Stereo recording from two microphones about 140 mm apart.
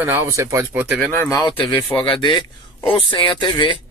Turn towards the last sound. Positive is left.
turn(degrees=35)  # may be behind; listen again after turning